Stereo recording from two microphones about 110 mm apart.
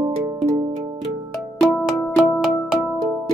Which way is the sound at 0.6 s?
30° right (ahead or behind).